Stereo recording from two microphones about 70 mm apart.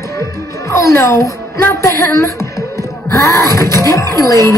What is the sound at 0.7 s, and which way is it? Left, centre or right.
Speech, left.